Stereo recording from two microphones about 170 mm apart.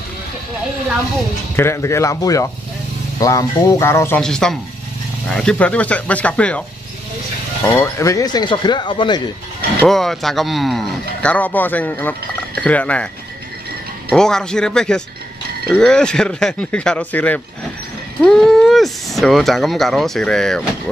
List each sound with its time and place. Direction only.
1.6 s speech: 15° left (ahead or behind)
4.2 s speech: 5° left (ahead or behind)
7.6 s speech: 10° left (ahead or behind)
9.8 s speech: centre (ahead or behind)
14.1 s speech: 5° left (ahead or behind)